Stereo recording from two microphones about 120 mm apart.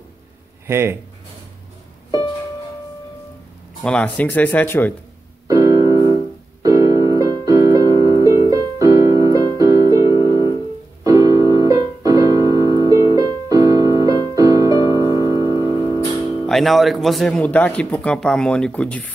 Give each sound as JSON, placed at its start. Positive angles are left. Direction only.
{"t": 0.7, "sound": "speech", "side_deg": -20}
{"t": 3.8, "sound": "speech", "side_deg": 10}
{"t": 5.5, "sound": "keyboard", "side_deg": -25}
{"t": 7.2, "sound": "music", "side_deg": -30}
{"t": 10.0, "sound": "music", "side_deg": 40}
{"t": 11.1, "sound": "piano", "side_deg": -30}
{"t": 12.8, "sound": "keyboard", "side_deg": -25}
{"t": 15.2, "sound": "music", "side_deg": -25}
{"t": 15.5, "sound": "music", "side_deg": 30}
{"t": 16.4, "sound": "speech", "side_deg": 0}